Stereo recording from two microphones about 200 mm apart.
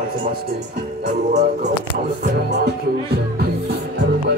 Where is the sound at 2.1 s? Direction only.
55° right (ahead or behind).